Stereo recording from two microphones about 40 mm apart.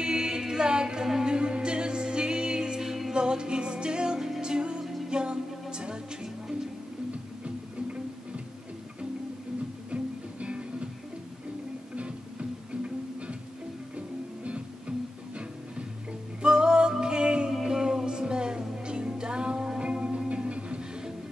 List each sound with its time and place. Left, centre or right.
0.0 s a capella: centre
1.0 s music: centre
1.3 s music: right
9.8 s music: right
12.0 s music: right